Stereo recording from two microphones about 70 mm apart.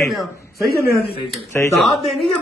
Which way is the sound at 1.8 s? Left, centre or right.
Centre.